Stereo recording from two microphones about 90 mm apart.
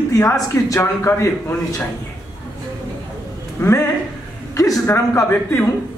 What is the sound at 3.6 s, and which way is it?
A woman's voice, 30° left (ahead or behind).